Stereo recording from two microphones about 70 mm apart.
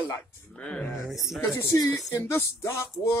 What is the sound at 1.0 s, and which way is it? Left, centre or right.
Speech, centre.